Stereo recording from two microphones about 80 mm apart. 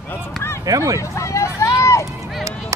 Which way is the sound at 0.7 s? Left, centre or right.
Right.